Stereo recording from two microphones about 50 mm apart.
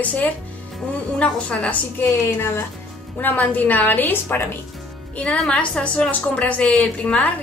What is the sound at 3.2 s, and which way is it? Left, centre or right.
A woman's voice, left.